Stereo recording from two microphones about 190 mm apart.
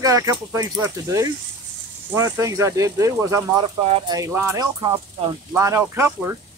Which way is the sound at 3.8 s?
30° right (ahead or behind).